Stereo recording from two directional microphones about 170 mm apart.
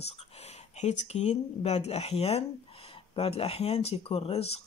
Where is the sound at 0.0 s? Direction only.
40° left (ahead or behind).